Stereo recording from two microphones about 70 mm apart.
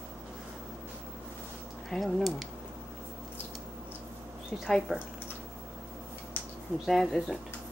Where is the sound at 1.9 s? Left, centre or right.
Centre.